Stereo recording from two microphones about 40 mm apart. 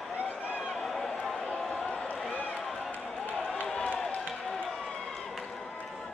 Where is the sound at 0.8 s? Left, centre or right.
Centre.